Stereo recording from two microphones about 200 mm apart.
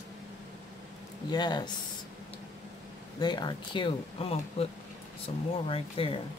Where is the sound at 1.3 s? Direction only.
20° left (ahead or behind).